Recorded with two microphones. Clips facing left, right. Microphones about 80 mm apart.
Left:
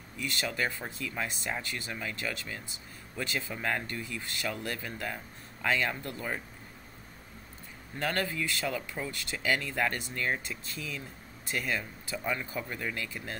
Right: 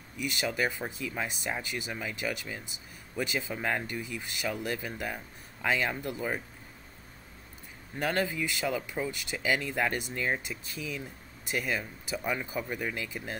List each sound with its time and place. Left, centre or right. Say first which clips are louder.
0.2 s speech: right 2 dB; centre
8.0 s speech: right 2 dB; centre